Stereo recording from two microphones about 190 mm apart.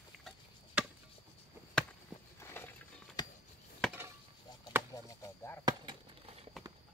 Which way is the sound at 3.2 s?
20° left (ahead or behind).